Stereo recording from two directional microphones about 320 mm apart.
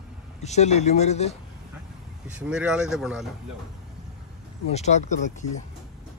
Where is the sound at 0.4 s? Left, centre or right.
Left.